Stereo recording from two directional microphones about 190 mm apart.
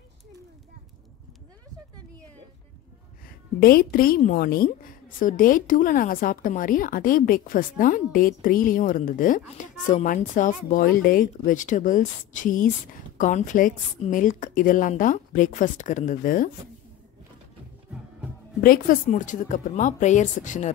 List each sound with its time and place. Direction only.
3.5 s a woman's voice: 50° left (ahead or behind)
17.9 s music: 5° right (ahead or behind)
18.6 s speech: 50° left (ahead or behind)